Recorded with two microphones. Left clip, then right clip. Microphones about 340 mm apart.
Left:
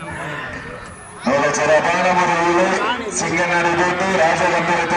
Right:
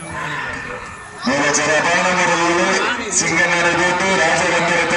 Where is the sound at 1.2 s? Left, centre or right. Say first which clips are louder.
Left 1 dB; left.